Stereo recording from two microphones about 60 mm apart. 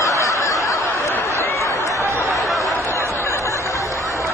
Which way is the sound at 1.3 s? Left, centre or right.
Left.